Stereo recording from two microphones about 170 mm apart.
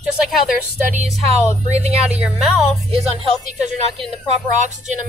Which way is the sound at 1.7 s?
40° right (ahead or behind).